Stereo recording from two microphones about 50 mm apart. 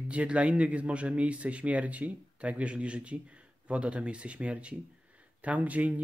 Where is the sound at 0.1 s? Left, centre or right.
Right.